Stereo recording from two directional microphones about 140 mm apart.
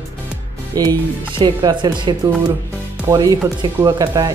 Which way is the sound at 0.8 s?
30° right (ahead or behind).